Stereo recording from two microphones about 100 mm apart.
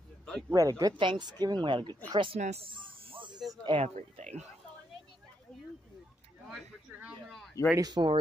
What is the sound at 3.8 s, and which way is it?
Speech, 90° right.